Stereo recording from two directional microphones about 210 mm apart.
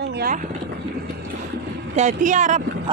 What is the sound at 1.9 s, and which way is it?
Speech, 35° right (ahead or behind).